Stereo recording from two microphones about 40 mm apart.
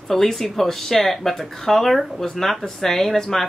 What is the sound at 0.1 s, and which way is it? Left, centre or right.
Speech, centre.